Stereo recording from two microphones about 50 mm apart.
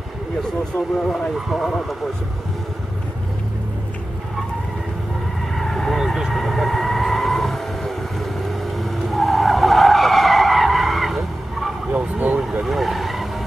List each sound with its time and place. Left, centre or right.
1.1 s speech: centre
5.6 s vehicle: centre
8.7 s skidding: centre
11.9 s vehicle: right
12.6 s vehicle: centre